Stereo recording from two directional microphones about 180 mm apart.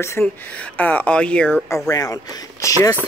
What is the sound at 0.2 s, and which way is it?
Speech, 5° left (ahead or behind).